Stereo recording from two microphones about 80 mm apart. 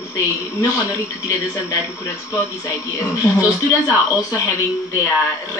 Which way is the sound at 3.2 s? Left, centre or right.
Left.